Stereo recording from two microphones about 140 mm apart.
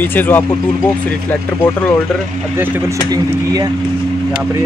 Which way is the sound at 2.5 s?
15° right (ahead or behind).